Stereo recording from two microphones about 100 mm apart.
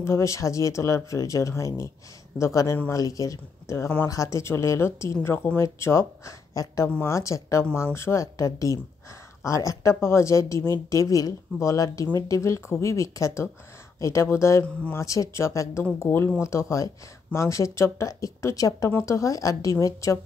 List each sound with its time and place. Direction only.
0.0 s speech: 30° left (ahead or behind)